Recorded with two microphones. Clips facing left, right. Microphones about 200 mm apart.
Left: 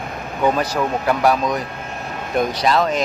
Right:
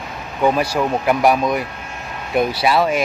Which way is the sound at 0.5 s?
10° right (ahead or behind).